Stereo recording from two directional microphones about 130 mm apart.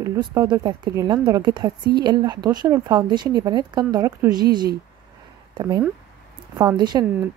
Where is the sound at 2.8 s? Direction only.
35° right (ahead or behind).